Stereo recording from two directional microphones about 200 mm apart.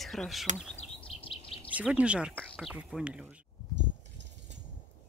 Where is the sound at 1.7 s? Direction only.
5° right (ahead or behind).